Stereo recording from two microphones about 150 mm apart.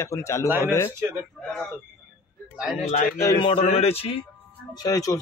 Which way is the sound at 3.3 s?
40° left (ahead or behind).